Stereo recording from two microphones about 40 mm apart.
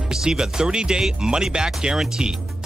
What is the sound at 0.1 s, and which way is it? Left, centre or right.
Speech, centre.